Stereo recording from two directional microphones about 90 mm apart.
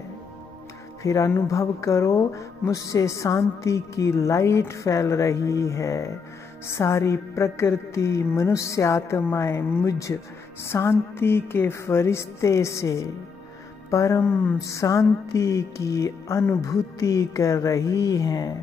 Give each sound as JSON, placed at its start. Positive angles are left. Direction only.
{"t": 1.0, "sound": "a woman's voice", "side_deg": 35}
{"t": 14.2, "sound": "speech", "side_deg": 20}
{"t": 14.6, "sound": "a woman's voice", "side_deg": 35}